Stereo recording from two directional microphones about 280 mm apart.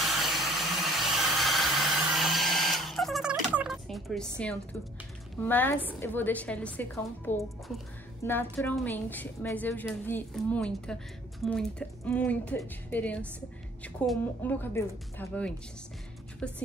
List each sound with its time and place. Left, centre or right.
0.0 s a sound: centre
5.4 s a woman's voice: centre
12.1 s a woman's voice: centre